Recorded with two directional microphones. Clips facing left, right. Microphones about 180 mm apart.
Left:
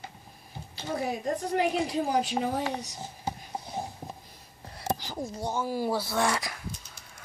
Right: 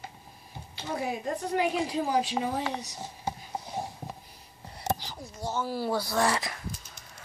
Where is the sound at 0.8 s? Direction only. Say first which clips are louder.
Left 1 dB; 40° left (ahead or behind).